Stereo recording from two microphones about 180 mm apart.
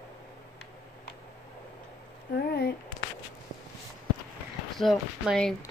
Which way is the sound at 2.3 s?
65° left (ahead or behind).